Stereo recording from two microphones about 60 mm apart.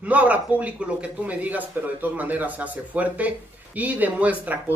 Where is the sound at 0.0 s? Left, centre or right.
Right.